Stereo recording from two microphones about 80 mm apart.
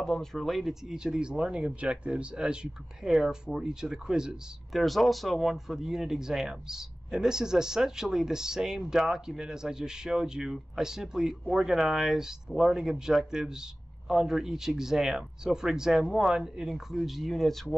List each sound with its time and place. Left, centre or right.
0.0 s a man's voice: centre